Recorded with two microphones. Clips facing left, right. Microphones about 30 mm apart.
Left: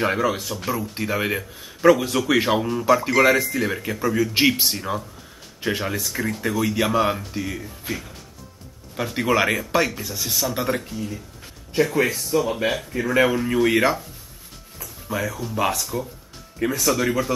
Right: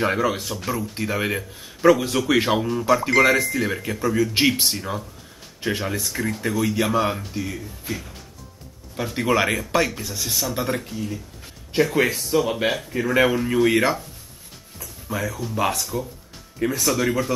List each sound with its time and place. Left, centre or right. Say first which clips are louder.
0.0 s a man's voice: even; centre
8.9 s a man's voice: even; centre
12.3 s speech: right 1 dB; right
12.6 s a man's voice: even; centre
14.8 s music: left 1 dB; centre
15.4 s a man's voice: right 1 dB; centre